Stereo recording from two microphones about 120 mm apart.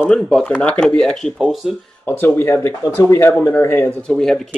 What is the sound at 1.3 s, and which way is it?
Speech, 5° right (ahead or behind).